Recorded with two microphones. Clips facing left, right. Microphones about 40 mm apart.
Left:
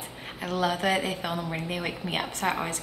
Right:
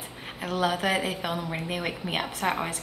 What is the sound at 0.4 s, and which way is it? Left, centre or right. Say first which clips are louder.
A woman's voice: even; centre.